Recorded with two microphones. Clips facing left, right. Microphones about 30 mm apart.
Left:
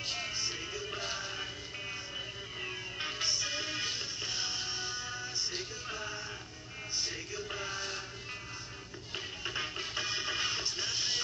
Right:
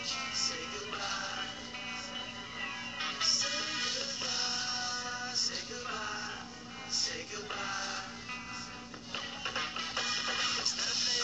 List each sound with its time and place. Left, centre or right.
1.4 s music: centre
3.3 s music: right
4.9 s music: right
7.7 s music: centre
9.1 s music: centre
9.9 s music: right